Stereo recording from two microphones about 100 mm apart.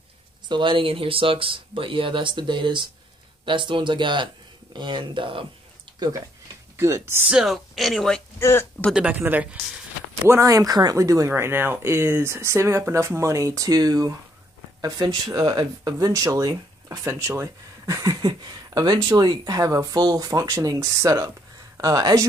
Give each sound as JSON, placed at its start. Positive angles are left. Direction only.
{"t": 0.5, "sound": "speech", "side_deg": -55}
{"t": 6.8, "sound": "speech", "side_deg": -25}
{"t": 7.2, "sound": "speech", "side_deg": -5}
{"t": 8.4, "sound": "speech", "side_deg": 25}
{"t": 8.9, "sound": "speech", "side_deg": -15}
{"t": 10.2, "sound": "speech", "side_deg": -30}